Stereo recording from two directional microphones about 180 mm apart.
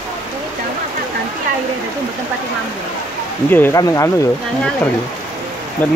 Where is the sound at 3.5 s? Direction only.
10° left (ahead or behind).